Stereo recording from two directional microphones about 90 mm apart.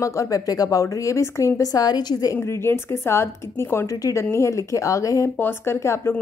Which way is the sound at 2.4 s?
30° left (ahead or behind).